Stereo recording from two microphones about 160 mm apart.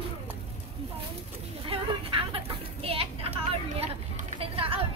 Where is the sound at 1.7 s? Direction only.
35° right (ahead or behind).